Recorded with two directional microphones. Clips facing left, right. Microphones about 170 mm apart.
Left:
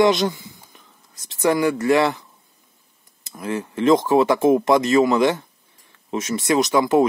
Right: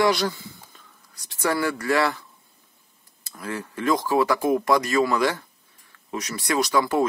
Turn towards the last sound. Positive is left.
turn(degrees=20)  # may be behind; listen again after turning